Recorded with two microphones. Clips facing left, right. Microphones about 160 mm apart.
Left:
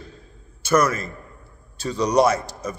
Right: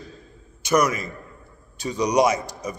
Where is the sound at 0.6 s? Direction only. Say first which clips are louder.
Left 1 dB; 15° right (ahead or behind).